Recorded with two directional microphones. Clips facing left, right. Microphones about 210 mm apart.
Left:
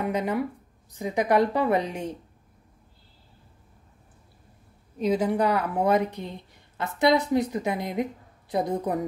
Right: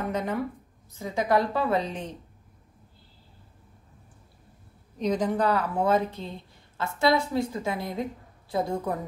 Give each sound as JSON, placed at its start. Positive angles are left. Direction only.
{"t": 0.0, "sound": "a woman's voice", "side_deg": 10}
{"t": 4.9, "sound": "a woman's voice", "side_deg": 5}